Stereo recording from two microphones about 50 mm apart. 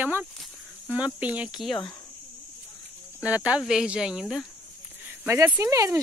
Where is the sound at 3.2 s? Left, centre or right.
Right.